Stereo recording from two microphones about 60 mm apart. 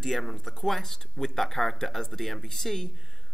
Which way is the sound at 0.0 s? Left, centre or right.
Centre.